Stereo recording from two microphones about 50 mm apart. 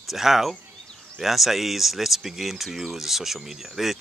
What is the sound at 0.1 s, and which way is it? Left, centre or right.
Speech, centre.